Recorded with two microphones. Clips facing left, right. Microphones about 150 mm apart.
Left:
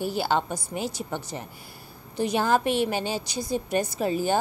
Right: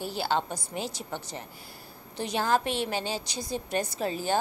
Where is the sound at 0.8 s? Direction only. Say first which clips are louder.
Left 5 dB; 50° left (ahead or behind).